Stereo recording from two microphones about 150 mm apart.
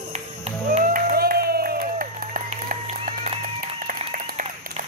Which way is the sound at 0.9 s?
85° right.